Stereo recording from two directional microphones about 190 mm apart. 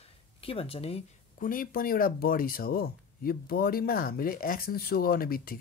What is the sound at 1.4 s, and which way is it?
Speech, 45° left (ahead or behind).